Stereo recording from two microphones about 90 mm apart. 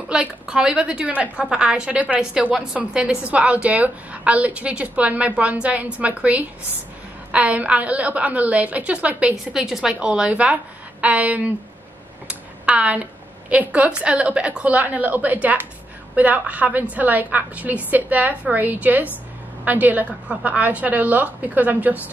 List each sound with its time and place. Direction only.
0.1 s a woman's voice: 10° right (ahead or behind)